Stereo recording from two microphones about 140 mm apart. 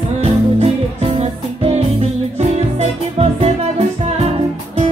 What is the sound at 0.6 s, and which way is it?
Music, 50° right (ahead or behind).